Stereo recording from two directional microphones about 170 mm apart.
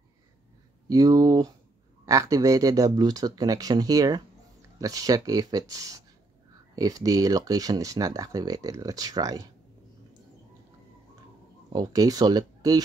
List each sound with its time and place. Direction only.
0.8 s speech: 20° right (ahead or behind)
11.7 s speech: 20° right (ahead or behind)